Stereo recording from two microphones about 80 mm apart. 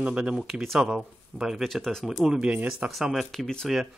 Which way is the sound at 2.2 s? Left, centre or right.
Centre.